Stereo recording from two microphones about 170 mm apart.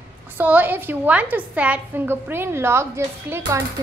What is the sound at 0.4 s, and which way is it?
A woman's voice, 10° right (ahead or behind).